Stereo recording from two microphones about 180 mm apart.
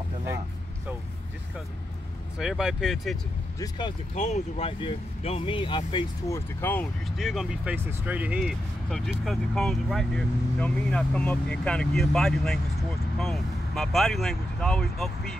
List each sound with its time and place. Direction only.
2.3 s speech: 5° right (ahead or behind)
3.5 s speech: 20° left (ahead or behind)
4.1 s speech: 40° left (ahead or behind)
6.2 s speech: 15° left (ahead or behind)